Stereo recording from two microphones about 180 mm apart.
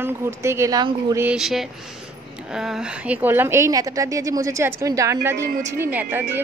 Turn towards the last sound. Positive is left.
turn(degrees=-10)  # may be behind; listen again after turning